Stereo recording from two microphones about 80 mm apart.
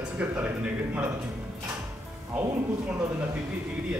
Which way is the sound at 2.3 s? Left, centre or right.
Centre.